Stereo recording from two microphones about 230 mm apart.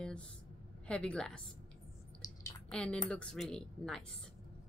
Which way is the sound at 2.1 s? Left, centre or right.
Centre.